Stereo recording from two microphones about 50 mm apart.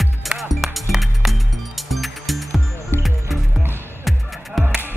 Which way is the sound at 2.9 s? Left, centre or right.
Left.